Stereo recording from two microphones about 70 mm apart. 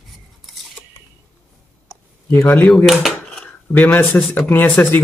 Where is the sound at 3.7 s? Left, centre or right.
Left.